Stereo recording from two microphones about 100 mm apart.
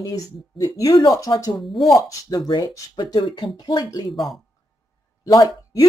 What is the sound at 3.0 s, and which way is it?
Speech, 55° left (ahead or behind).